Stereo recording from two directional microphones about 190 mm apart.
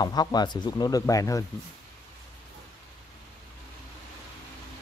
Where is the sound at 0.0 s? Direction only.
20° left (ahead or behind).